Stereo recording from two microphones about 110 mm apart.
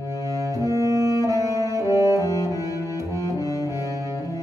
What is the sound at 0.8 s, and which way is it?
Music, 30° right (ahead or behind).